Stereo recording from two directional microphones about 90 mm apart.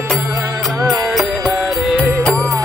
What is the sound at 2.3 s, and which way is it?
Music, 35° right (ahead or behind).